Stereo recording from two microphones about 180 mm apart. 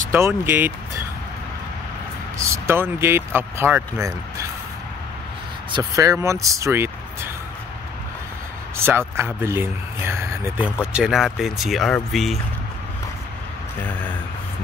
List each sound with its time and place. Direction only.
0.1 s speech: 10° right (ahead or behind)
2.3 s speech: 15° right (ahead or behind)
5.7 s speech: 20° right (ahead or behind)
8.7 s speech: 15° right (ahead or behind)
10.9 s speech: 5° right (ahead or behind)